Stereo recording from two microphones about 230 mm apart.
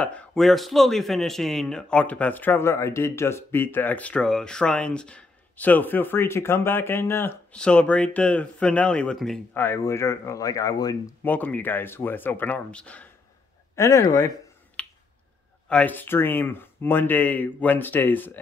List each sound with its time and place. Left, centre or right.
0.0 s speech: centre
14.8 s finger snapping: centre
15.7 s speech: centre